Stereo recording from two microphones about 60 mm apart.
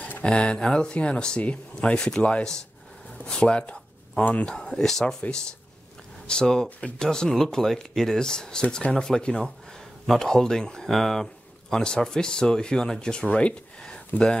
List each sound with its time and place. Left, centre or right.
0.2 s speech: centre
4.6 s speech: centre
6.2 s speech: centre